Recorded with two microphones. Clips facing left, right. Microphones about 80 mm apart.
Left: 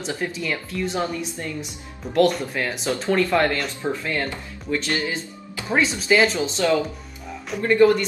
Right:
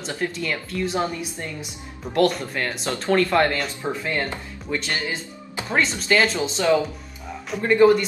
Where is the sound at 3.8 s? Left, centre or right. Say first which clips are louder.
Even; right.